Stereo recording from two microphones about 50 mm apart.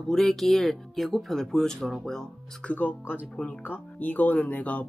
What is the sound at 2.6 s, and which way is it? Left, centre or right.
Speech, left.